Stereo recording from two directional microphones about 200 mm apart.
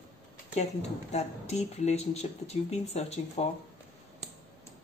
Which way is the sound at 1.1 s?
35° left (ahead or behind).